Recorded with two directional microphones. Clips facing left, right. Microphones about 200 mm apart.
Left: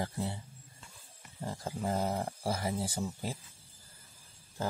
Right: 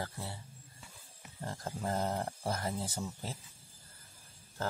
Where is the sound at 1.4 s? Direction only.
10° left (ahead or behind).